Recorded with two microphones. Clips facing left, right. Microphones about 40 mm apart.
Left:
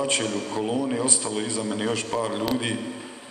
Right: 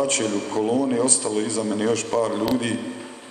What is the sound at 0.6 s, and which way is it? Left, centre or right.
A man's voice, centre.